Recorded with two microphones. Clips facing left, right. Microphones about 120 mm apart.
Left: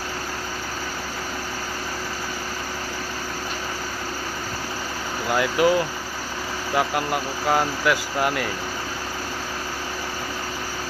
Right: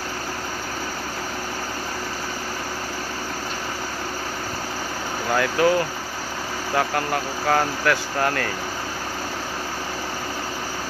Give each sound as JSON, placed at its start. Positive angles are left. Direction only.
{"t": 5.3, "sound": "speech", "side_deg": 15}
{"t": 6.8, "sound": "speech", "side_deg": 15}